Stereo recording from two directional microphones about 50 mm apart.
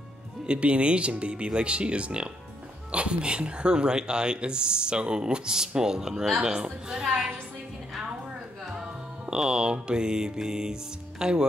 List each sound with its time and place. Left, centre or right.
0.5 s speech: right
9.2 s speech: centre